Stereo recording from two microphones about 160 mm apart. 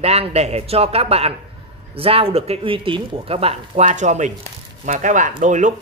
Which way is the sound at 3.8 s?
50° right (ahead or behind).